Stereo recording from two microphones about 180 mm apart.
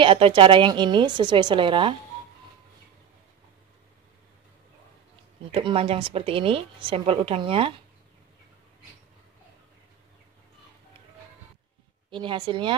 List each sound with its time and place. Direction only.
0.0 s a woman's voice: 30° right (ahead or behind)
5.5 s a woman's voice: 30° right (ahead or behind)
12.1 s a woman's voice: 25° right (ahead or behind)